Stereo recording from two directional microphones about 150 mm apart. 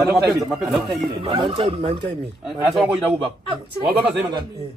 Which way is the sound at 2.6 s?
Centre (ahead or behind).